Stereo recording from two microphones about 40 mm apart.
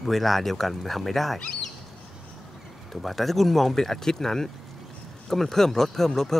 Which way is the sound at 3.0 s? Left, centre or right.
Centre.